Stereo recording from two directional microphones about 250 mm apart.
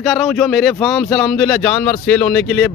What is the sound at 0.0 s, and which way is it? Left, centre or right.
Speech, centre.